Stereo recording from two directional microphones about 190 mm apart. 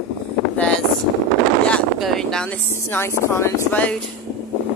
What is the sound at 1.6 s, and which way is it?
Speech, 5° left (ahead or behind).